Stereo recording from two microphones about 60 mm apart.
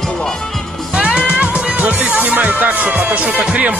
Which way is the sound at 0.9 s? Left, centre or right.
Centre.